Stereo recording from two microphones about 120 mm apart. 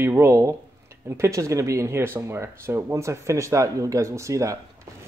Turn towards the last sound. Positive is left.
turn(degrees=-25)  # may be behind; listen again after turning